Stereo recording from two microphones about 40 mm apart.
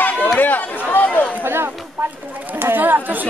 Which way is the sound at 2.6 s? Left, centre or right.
Right.